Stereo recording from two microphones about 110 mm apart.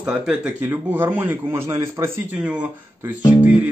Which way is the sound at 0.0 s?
10° right (ahead or behind).